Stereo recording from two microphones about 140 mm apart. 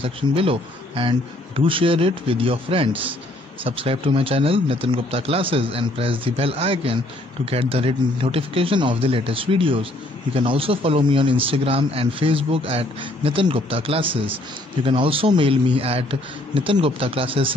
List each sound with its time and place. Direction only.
0.0 s speech: 40° right (ahead or behind)